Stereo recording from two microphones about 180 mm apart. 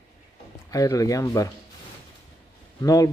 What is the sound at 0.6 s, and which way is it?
Speech, 20° left (ahead or behind).